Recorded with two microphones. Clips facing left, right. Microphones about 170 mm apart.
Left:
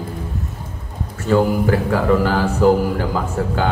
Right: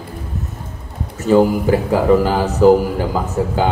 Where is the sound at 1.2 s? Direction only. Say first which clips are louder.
Right 3 dB; 15° right (ahead or behind).